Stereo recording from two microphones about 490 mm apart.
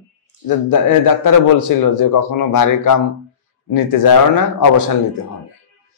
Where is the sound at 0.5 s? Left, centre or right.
Left.